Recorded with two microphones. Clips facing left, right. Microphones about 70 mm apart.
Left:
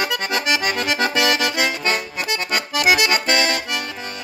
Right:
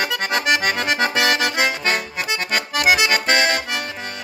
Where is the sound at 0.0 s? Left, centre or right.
Right.